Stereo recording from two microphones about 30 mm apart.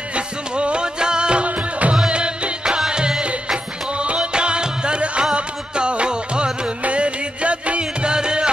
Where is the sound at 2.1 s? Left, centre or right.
Right.